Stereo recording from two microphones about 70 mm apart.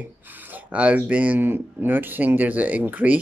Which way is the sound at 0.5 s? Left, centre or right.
Right.